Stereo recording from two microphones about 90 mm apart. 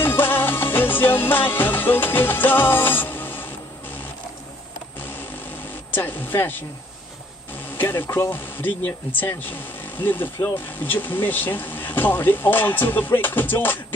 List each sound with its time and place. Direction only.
0.0 s music: 25° left (ahead or behind)
5.9 s speech: 20° left (ahead or behind)
7.7 s speech: 25° left (ahead or behind)